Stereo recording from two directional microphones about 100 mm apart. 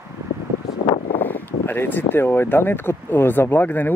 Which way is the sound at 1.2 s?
20° left (ahead or behind).